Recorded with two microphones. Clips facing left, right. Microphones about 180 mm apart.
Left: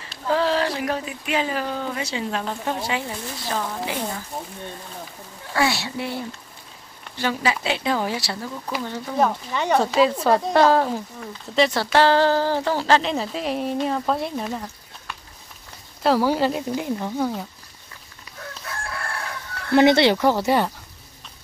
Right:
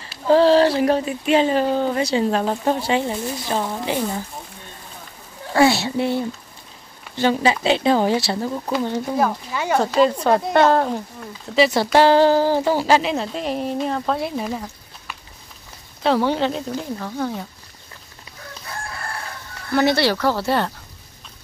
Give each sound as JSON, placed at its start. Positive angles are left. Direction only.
{"t": 0.3, "sound": "speech", "side_deg": -30}
{"t": 3.1, "sound": "speech", "side_deg": -25}
{"t": 5.5, "sound": "speech", "side_deg": -25}
{"t": 7.2, "sound": "speech", "side_deg": -25}
{"t": 8.8, "sound": "speech", "side_deg": -20}
{"t": 9.1, "sound": "a woman's voice", "side_deg": -5}
{"t": 16.0, "sound": "speech", "side_deg": 5}
{"t": 19.7, "sound": "speech", "side_deg": 20}